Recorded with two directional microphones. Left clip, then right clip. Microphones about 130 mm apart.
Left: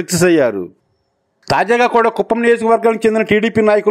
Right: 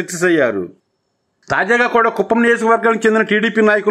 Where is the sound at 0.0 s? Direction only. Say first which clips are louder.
Left 2 dB; 35° left (ahead or behind).